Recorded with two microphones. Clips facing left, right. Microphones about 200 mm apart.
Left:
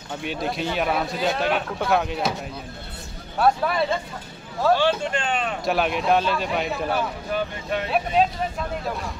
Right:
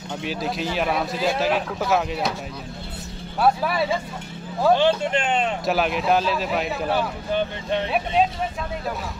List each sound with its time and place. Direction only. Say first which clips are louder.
0.1 s a man's voice: even; centre (ahead or behind)
3.3 s a man's voice: even; 5° right (ahead or behind)
4.6 s speech: right 2 dB; 20° right (ahead or behind)
5.7 s a man's voice: left 1 dB; centre (ahead or behind)